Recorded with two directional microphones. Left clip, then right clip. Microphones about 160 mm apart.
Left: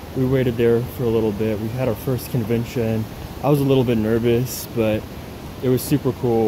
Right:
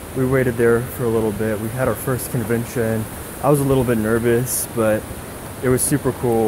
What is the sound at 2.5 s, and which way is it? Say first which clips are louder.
Speech: right 1 dB; 25° left (ahead or behind).